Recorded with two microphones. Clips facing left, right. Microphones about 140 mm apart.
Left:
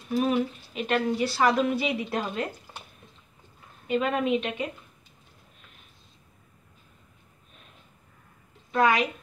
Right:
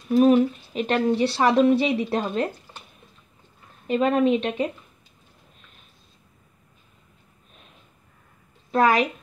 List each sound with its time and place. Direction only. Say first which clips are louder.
0.2 s a woman's voice: right 9 dB; 40° right (ahead or behind)
3.8 s a woman's voice: right 6 dB; 35° right (ahead or behind)
8.7 s a woman's voice: right 3 dB; 40° right (ahead or behind)